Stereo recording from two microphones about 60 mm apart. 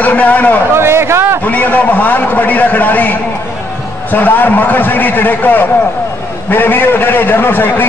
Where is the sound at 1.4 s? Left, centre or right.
Left.